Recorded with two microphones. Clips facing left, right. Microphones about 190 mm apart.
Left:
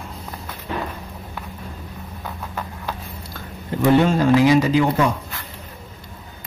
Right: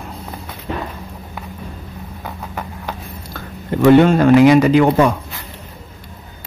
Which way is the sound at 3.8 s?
65° right (ahead or behind).